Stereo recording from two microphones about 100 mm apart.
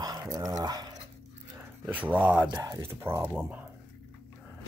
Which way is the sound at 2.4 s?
40° right (ahead or behind).